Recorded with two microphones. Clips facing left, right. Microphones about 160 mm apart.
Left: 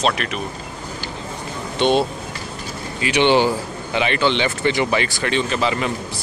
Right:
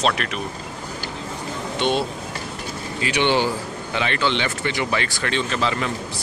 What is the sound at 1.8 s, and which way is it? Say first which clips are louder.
Speech: left 5 dB; 25° left (ahead or behind).